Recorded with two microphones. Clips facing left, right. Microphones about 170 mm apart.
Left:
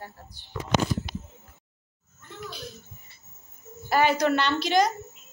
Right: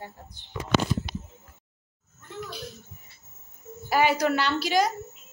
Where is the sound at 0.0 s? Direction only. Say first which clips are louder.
Right 1 dB; 20° right (ahead or behind).